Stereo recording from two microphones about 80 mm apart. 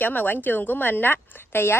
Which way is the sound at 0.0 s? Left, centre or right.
Left.